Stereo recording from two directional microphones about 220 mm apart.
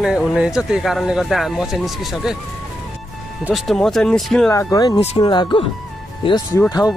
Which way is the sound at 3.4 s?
Centre (ahead or behind).